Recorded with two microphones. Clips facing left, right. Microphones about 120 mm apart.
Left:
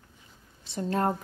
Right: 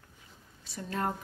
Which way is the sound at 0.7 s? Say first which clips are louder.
Left 6 dB; 35° left (ahead or behind).